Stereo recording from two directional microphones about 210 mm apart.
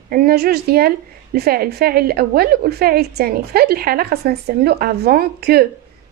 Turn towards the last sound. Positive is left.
turn(degrees=-45)  # may be behind; listen again after turning